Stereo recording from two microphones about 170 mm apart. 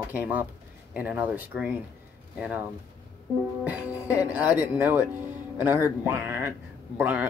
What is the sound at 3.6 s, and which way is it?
Speech, 10° right (ahead or behind).